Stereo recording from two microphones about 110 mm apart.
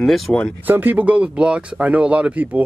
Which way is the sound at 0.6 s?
15° right (ahead or behind).